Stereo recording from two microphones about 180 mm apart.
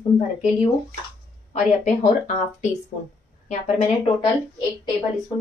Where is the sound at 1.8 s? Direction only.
40° left (ahead or behind).